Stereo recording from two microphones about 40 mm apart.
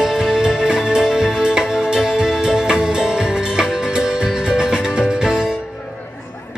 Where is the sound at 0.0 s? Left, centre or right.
Centre.